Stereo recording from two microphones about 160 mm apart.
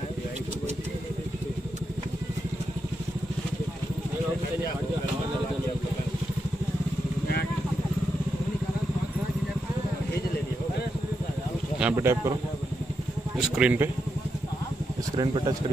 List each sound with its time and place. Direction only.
11.8 s speech: 15° right (ahead or behind)
13.4 s speech: 5° right (ahead or behind)
15.1 s speech: 30° right (ahead or behind)